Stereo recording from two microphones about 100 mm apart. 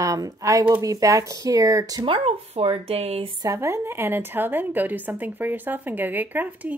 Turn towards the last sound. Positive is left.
turn(degrees=-15)  # may be behind; listen again after turning